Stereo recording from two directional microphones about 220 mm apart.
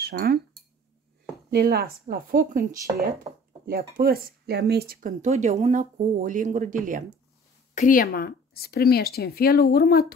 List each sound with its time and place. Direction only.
0.0 s speech: 45° right (ahead or behind)
1.5 s speech: 45° right (ahead or behind)
7.7 s speech: 40° left (ahead or behind)